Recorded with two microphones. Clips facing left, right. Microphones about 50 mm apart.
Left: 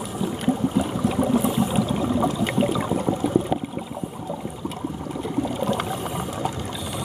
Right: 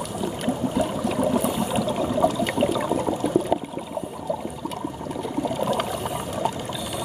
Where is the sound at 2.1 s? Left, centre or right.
Centre.